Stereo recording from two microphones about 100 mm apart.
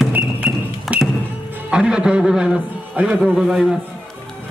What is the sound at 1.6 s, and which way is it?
A man's voice, 10° right (ahead or behind).